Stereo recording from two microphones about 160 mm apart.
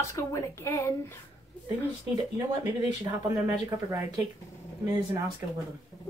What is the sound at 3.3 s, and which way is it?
Speech, 20° right (ahead or behind).